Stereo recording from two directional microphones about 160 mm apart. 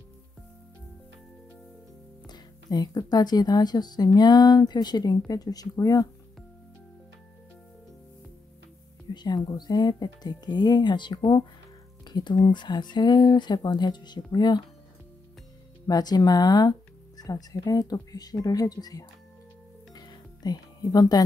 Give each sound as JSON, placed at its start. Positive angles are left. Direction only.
{"t": 2.2, "sound": "speech", "side_deg": 25}
{"t": 9.1, "sound": "speech", "side_deg": 25}
{"t": 15.9, "sound": "speech", "side_deg": 25}
{"t": 19.9, "sound": "music", "side_deg": 25}